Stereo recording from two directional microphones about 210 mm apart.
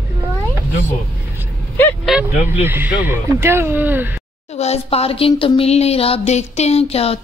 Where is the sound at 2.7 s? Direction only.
10° right (ahead or behind).